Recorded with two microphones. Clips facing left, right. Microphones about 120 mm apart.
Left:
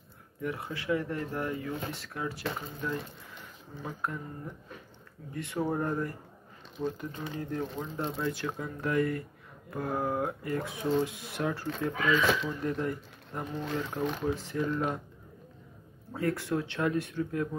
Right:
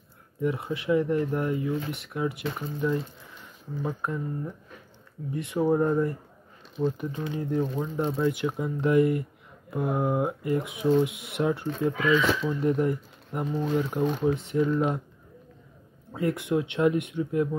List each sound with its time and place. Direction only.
0.4 s speech: 25° right (ahead or behind)
5.3 s speech: 20° right (ahead or behind)
16.1 s speech: 20° right (ahead or behind)